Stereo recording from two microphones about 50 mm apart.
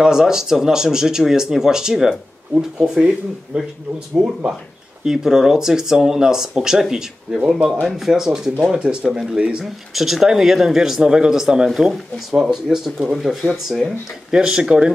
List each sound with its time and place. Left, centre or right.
0.0 s speech: centre
9.6 s speech: centre
14.3 s speech: centre